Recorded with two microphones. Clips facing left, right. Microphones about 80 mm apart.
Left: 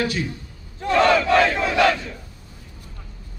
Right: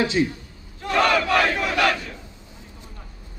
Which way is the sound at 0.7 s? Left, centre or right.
Left.